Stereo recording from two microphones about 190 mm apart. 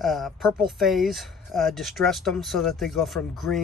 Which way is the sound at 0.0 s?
Centre (ahead or behind).